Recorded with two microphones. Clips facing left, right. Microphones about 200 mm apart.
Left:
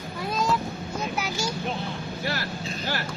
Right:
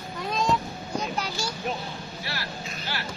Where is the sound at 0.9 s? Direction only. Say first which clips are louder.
Right 1 dB; 5° left (ahead or behind).